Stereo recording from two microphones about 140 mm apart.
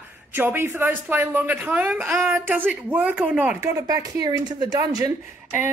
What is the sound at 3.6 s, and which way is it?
A woman's voice, 20° right (ahead or behind).